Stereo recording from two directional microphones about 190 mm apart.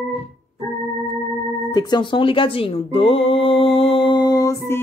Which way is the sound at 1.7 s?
25° left (ahead or behind).